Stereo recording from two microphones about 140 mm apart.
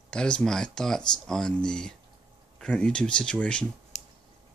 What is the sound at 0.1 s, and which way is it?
Speech, 5° left (ahead or behind).